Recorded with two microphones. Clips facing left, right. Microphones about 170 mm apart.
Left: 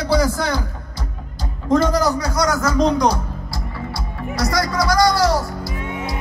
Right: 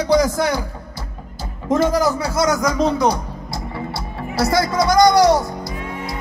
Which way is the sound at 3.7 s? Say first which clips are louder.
Right 2 dB; 25° right (ahead or behind).